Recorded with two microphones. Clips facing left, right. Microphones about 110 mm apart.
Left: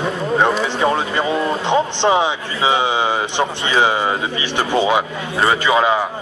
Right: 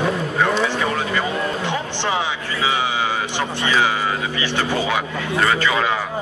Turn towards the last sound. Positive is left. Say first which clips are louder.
# left 4 dB
turn(degrees=25)  # may be behind; listen again after turning